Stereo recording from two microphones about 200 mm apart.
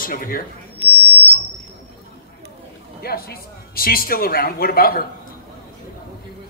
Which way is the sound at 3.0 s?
50° left (ahead or behind).